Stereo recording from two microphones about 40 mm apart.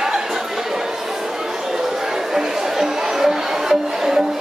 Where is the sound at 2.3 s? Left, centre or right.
Centre.